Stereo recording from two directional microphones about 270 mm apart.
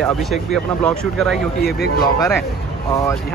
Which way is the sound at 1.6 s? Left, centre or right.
Left.